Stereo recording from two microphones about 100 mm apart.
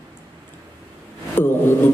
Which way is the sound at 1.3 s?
20° left (ahead or behind).